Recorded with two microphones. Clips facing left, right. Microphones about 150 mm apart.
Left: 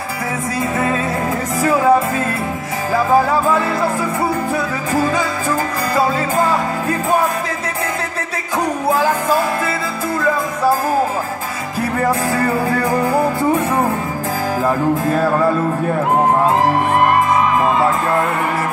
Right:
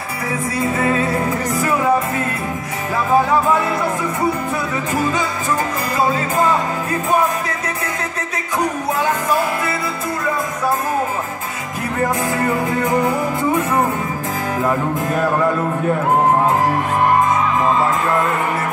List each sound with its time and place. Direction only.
1.6 s music: 25° left (ahead or behind)
8.9 s music: 30° left (ahead or behind)